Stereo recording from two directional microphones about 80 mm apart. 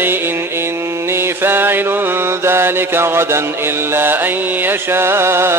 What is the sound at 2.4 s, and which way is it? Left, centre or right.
Music, right.